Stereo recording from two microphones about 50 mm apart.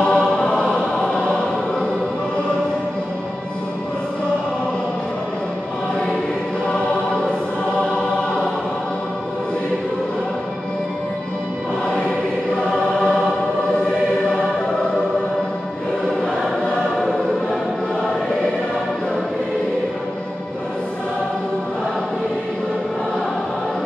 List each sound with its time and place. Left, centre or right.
0.0 s choir: centre
0.9 s choir: centre
6.7 s choir: centre
12.5 s choir: centre